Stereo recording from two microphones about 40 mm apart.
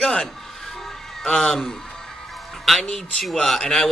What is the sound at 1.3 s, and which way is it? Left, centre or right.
Speech, centre.